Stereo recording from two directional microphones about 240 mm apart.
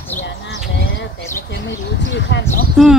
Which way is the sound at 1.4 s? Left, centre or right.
Left.